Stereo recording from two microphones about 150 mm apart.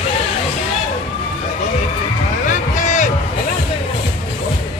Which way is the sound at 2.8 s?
55° left (ahead or behind).